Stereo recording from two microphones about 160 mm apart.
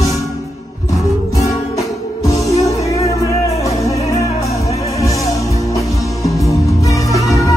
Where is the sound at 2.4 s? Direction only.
Centre (ahead or behind).